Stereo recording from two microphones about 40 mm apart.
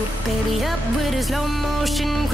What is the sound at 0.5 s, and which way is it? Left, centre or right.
Music, centre.